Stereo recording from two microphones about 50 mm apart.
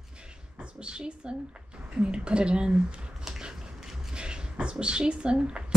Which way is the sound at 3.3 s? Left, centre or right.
Centre.